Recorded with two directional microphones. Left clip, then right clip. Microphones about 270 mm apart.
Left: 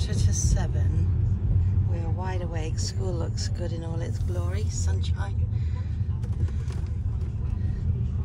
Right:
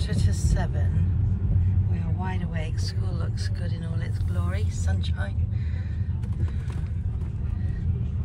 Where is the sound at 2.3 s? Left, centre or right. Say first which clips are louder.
Left 1 dB; left.